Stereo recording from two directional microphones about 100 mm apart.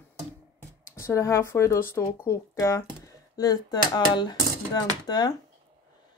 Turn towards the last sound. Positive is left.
turn(degrees=45)  # may be behind; listen again after turning